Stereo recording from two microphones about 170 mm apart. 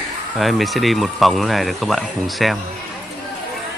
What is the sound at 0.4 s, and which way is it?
Speech, centre (ahead or behind).